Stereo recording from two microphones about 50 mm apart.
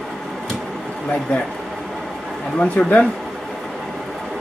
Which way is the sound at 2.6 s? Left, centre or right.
Left.